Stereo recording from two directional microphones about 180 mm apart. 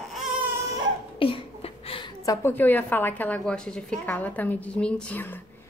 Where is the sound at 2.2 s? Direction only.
15° left (ahead or behind).